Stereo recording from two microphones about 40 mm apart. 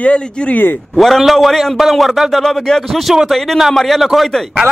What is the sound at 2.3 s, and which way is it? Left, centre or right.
Speech, centre.